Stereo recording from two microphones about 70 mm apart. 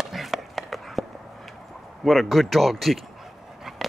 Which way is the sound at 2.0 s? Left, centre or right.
Centre.